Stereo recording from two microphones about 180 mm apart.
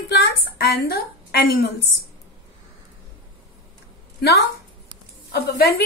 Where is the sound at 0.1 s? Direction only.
65° left (ahead or behind).